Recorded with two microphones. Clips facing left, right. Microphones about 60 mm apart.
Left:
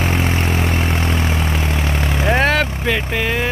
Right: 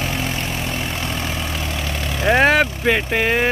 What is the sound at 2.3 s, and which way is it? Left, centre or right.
Vehicle, centre.